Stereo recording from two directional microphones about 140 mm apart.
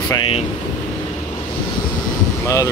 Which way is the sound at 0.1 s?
40° left (ahead or behind).